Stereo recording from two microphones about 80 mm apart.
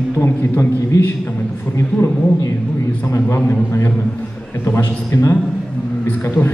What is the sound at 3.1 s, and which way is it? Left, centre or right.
A man's voice, left.